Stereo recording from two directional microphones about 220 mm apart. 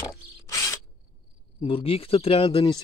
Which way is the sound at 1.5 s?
25° left (ahead or behind).